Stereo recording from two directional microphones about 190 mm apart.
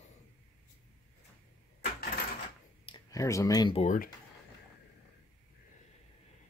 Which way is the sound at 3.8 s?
45° left (ahead or behind).